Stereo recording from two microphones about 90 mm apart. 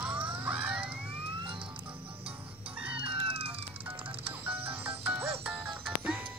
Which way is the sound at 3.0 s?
90° right.